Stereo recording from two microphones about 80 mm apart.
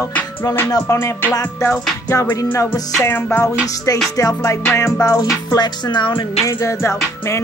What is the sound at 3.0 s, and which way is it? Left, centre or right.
Music, left.